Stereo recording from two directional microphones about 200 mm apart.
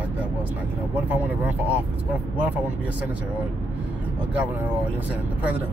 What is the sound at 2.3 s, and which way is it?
Speech, 10° right (ahead or behind).